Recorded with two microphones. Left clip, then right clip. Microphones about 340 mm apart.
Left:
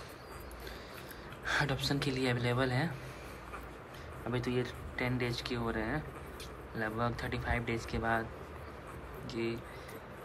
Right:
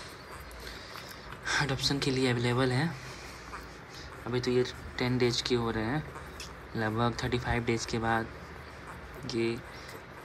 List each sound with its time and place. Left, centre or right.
1.4 s speech: centre
4.3 s speech: centre
9.3 s speech: centre